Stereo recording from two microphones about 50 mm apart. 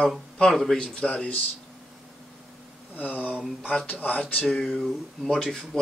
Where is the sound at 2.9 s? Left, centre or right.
Left.